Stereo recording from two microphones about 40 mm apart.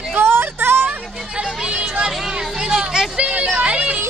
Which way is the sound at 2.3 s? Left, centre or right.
Centre.